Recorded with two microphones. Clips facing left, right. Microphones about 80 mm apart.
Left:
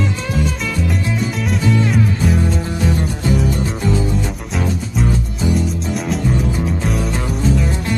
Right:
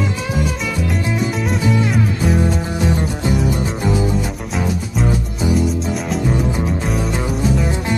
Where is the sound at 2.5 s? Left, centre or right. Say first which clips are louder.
Even; centre.